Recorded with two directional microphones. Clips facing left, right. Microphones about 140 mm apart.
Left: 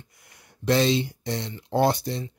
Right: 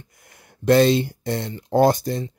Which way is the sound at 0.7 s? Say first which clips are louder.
Right 6 dB; 50° right (ahead or behind).